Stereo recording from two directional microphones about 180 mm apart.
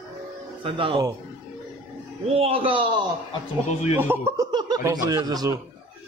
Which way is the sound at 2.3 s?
30° right (ahead or behind).